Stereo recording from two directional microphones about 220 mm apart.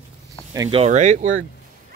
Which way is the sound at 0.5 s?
20° right (ahead or behind).